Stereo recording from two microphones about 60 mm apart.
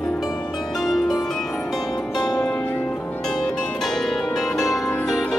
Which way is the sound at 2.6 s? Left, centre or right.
Left.